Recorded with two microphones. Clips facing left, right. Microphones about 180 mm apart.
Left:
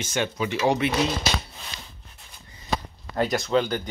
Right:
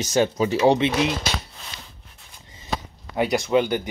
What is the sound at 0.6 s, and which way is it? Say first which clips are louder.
Speech: right 3 dB; 25° right (ahead or behind).